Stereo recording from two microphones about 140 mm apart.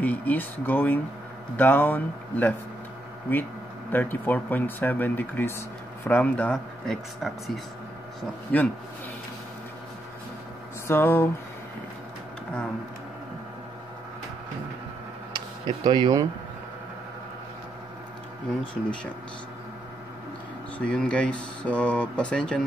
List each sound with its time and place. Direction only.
0.0 s speech: 10° left (ahead or behind)
3.9 s speech: 15° left (ahead or behind)
8.5 s speech: 10° left (ahead or behind)
10.9 s speech: 15° left (ahead or behind)
15.6 s speech: 35° right (ahead or behind)
18.5 s speech: 5° left (ahead or behind)
20.7 s speech: 10° left (ahead or behind)